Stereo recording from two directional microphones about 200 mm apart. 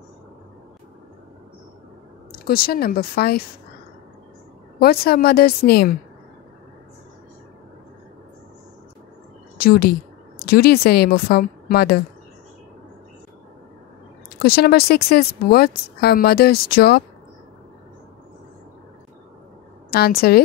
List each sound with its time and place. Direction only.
2.3 s a woman's voice: 50° left (ahead or behind)
4.7 s a woman's voice: 50° left (ahead or behind)
9.6 s a woman's voice: 50° left (ahead or behind)
14.4 s a woman's voice: 50° left (ahead or behind)
19.9 s a woman's voice: 50° left (ahead or behind)